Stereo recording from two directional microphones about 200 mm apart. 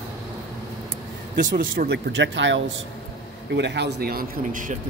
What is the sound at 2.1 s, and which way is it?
Speech, 65° right (ahead or behind).